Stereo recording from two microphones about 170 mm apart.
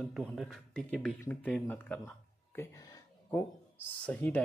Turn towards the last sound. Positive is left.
turn(degrees=10)  # may be behind; listen again after turning